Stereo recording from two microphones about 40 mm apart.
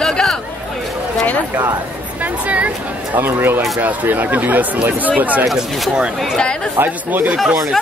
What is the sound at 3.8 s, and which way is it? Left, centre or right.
Speech, right.